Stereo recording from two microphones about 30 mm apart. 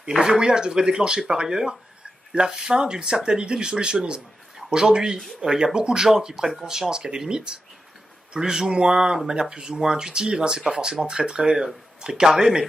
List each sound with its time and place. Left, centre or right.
0.0 s speech: right
8.4 s speech: centre
8.7 s speech: right